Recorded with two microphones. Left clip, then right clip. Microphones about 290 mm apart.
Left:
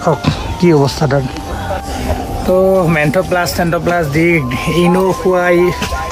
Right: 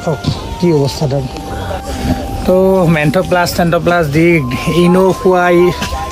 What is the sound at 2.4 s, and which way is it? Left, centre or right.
Speech, centre.